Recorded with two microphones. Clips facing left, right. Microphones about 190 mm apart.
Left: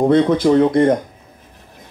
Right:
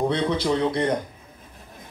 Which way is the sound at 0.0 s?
50° left (ahead or behind).